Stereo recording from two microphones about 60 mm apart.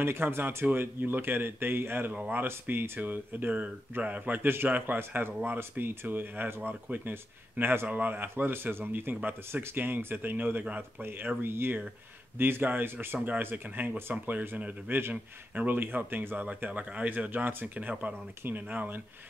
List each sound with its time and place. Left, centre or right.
0.0 s speech: right
16.4 s speech: right